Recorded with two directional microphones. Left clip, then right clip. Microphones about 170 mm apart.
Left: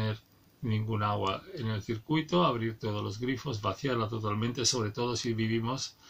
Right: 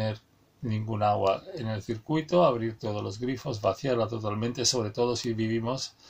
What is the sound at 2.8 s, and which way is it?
Speech, 30° left (ahead or behind).